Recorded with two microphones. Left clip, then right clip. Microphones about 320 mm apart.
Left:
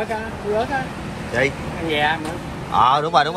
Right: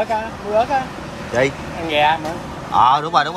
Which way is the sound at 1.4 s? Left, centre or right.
Centre.